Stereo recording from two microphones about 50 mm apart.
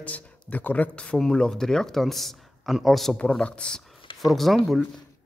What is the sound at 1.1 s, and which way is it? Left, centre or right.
Speech, centre.